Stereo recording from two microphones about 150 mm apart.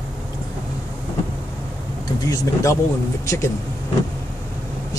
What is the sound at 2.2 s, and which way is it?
Speech, 20° left (ahead or behind).